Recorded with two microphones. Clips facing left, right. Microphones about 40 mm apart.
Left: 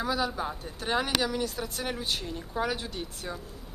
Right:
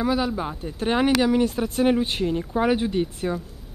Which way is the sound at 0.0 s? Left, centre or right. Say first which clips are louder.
Right 6 dB; centre.